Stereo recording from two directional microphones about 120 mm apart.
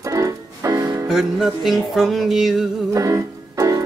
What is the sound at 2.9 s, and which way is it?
Music, 25° right (ahead or behind).